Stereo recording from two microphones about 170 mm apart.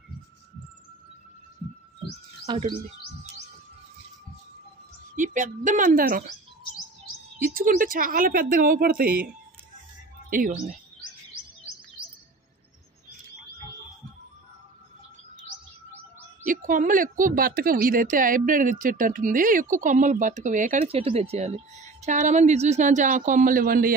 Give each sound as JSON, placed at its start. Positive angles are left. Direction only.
{"t": 2.4, "sound": "speech", "side_deg": -25}
{"t": 5.1, "sound": "speech", "side_deg": -50}
{"t": 7.4, "sound": "speech", "side_deg": -55}
{"t": 10.3, "sound": "speech", "side_deg": -55}
{"t": 16.4, "sound": "speech", "side_deg": -50}